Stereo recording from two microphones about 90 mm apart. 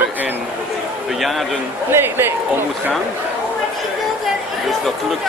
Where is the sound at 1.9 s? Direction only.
25° right (ahead or behind).